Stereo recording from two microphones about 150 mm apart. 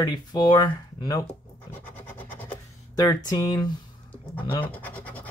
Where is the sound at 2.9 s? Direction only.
25° left (ahead or behind).